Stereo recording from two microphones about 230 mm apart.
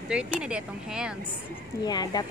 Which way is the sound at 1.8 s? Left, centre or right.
Centre.